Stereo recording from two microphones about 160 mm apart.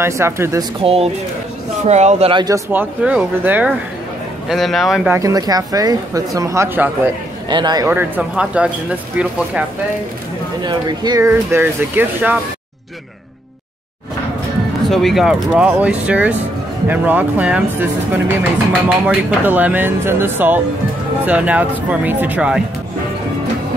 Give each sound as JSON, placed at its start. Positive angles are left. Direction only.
{"t": 0.0, "sound": "speech", "side_deg": -15}
{"t": 0.8, "sound": "speech", "side_deg": -40}
{"t": 2.4, "sound": "speech", "side_deg": -15}
{"t": 4.5, "sound": "speech", "side_deg": 0}
{"t": 5.1, "sound": "speech", "side_deg": -20}
{"t": 7.4, "sound": "speech", "side_deg": -25}
{"t": 7.9, "sound": "speech", "side_deg": -5}
{"t": 10.6, "sound": "speech", "side_deg": -30}
{"t": 14.9, "sound": "speech", "side_deg": 0}